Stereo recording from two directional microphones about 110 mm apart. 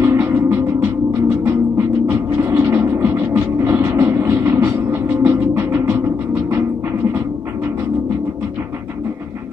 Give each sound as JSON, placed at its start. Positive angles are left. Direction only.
{"t": 0.0, "sound": "music", "side_deg": -20}